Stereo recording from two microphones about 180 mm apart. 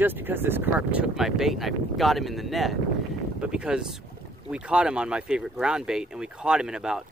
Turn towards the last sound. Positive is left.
turn(degrees=-5)  # may be behind; listen again after turning